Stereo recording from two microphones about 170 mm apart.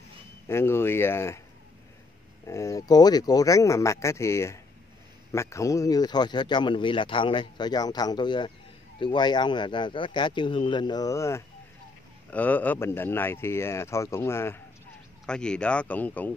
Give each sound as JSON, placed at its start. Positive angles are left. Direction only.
{"t": 0.5, "sound": "speech", "side_deg": 15}
{"t": 2.4, "sound": "speech", "side_deg": 20}